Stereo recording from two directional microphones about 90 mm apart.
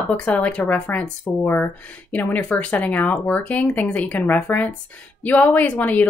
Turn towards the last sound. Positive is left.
turn(degrees=20)  # may be behind; listen again after turning